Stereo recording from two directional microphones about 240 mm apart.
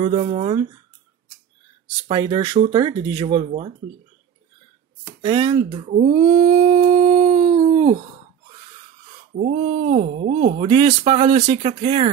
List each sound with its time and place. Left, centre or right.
0.0 s speech: right
2.0 s speech: centre
5.2 s speech: right
9.3 s speech: right